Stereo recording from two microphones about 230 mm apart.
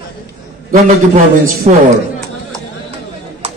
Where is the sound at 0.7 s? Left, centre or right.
Right.